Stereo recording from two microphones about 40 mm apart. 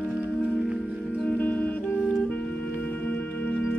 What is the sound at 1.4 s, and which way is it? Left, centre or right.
Music, left.